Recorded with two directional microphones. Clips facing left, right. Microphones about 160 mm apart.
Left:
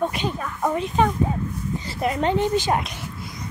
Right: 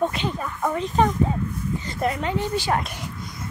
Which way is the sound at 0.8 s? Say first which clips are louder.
Right 1 dB; centre (ahead or behind).